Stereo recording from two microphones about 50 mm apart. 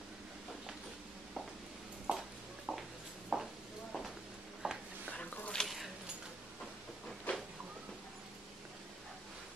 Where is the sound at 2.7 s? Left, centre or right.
Centre.